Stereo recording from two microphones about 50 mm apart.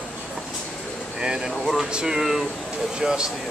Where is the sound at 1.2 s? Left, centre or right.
Centre.